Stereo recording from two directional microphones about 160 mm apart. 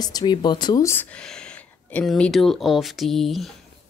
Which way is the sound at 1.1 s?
5° left (ahead or behind).